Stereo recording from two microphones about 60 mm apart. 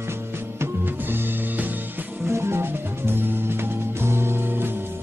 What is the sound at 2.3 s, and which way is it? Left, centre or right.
Music, right.